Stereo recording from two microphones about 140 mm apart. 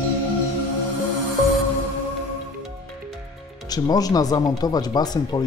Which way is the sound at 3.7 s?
25° left (ahead or behind).